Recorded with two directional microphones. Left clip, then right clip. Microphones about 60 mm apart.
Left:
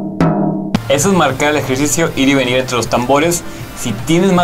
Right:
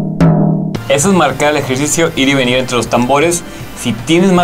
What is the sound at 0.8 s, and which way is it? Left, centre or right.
Speech, centre.